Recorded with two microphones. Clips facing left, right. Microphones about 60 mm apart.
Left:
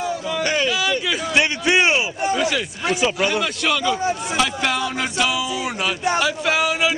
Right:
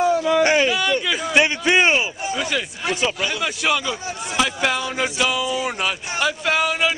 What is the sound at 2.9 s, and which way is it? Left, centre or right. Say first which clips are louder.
Speech: left 3 dB; centre.